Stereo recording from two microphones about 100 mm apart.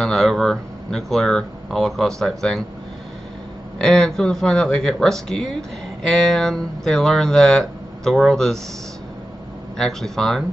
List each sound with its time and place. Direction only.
0.0 s speech: 5° left (ahead or behind)
3.7 s speech: 5° left (ahead or behind)
9.8 s speech: 5° left (ahead or behind)